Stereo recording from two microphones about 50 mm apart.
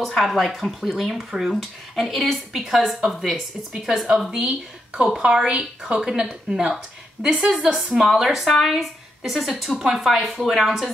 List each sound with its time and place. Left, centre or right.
0.2 s a woman's voice: centre
4.3 s a woman's voice: right; by 10.9 s centre